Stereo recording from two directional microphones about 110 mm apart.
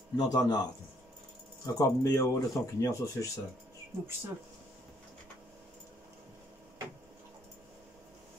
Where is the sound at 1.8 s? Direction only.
30° left (ahead or behind).